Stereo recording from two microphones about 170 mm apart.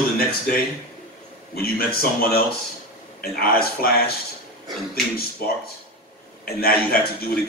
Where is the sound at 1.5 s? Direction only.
60° left (ahead or behind).